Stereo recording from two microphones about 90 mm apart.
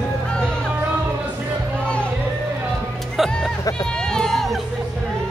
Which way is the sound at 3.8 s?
10° left (ahead or behind).